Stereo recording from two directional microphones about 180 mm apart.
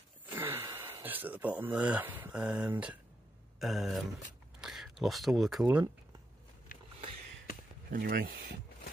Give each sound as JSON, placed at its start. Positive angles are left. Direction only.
{"t": 0.3, "sound": "speech", "side_deg": -10}
{"t": 7.9, "sound": "speech", "side_deg": -55}